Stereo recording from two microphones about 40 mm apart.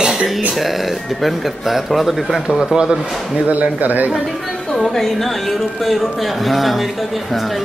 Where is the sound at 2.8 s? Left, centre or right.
Centre.